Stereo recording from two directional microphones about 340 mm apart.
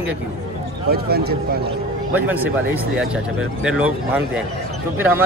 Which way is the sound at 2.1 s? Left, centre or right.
Centre.